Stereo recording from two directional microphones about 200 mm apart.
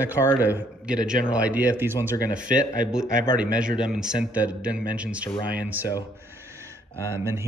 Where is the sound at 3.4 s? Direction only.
5° right (ahead or behind).